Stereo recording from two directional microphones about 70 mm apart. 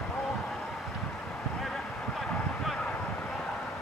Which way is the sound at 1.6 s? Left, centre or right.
Centre.